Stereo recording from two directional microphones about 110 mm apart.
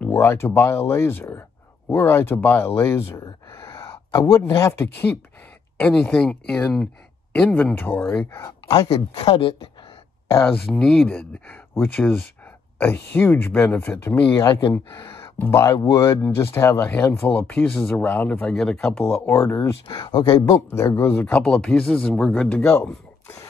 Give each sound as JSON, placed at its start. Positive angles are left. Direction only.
{"t": 0.1, "sound": "speech", "side_deg": 25}
{"t": 3.6, "sound": "a sound", "side_deg": 30}
{"t": 4.4, "sound": "speech", "side_deg": 25}
{"t": 9.1, "sound": "speech", "side_deg": 55}
{"t": 10.4, "sound": "speech", "side_deg": 10}
{"t": 15.0, "sound": "a sound", "side_deg": 50}
{"t": 15.3, "sound": "speech", "side_deg": 20}
{"t": 19.3, "sound": "speech", "side_deg": 30}
{"t": 20.0, "sound": "speech", "side_deg": 40}
{"t": 20.4, "sound": "speech", "side_deg": 25}